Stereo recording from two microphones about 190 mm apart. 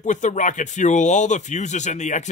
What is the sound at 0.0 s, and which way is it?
Speech, 40° left (ahead or behind).